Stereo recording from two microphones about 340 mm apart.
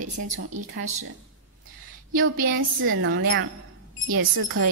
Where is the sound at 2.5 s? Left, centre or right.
Right.